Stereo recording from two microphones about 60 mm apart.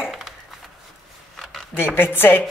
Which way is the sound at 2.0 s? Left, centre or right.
Left.